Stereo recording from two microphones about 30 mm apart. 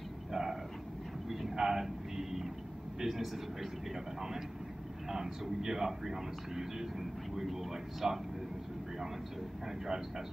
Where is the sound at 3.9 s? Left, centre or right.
Centre.